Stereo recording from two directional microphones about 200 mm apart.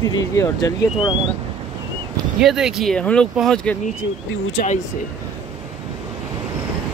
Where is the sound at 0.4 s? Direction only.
20° left (ahead or behind).